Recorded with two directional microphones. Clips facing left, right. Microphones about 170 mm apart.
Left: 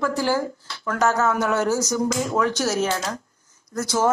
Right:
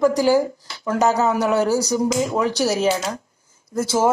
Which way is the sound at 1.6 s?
35° right (ahead or behind).